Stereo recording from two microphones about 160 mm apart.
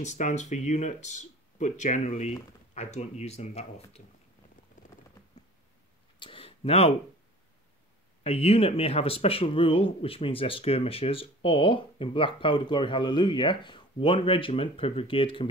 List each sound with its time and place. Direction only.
0.0 s speech: 45° left (ahead or behind)
6.1 s a sound: 30° left (ahead or behind)
8.2 s speech: 40° left (ahead or behind)